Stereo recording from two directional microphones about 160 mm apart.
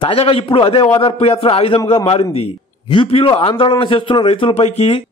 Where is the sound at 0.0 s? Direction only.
40° left (ahead or behind).